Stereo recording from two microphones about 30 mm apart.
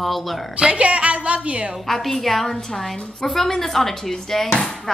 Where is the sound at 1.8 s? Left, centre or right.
Centre.